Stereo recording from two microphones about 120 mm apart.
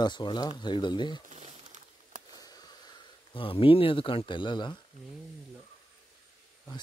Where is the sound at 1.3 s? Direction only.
70° right (ahead or behind).